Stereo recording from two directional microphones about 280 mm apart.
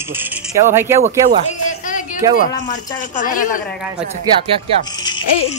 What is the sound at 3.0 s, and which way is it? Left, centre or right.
Speech, left.